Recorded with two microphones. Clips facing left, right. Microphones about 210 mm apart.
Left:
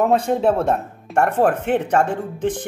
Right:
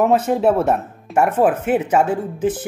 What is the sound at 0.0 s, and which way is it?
Speech, 5° right (ahead or behind).